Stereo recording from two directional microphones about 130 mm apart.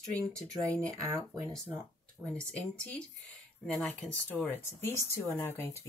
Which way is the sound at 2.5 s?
10° left (ahead or behind).